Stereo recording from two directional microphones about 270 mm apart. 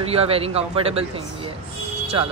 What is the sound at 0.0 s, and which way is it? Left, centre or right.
Speech, right.